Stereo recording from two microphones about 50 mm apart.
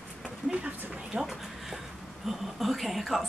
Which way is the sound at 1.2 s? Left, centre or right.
Centre.